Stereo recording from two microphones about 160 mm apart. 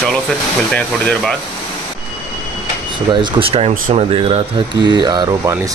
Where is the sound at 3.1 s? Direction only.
30° right (ahead or behind).